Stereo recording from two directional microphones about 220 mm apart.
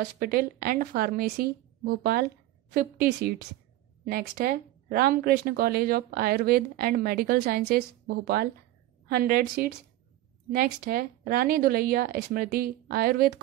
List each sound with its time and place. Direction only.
0.0 s a woman's voice: 40° right (ahead or behind)